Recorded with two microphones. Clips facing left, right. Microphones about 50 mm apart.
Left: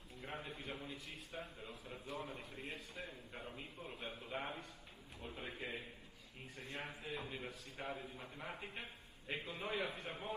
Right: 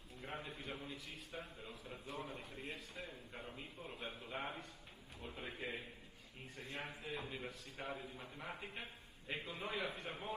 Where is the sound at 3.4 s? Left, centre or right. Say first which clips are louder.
Left 1 dB; centre.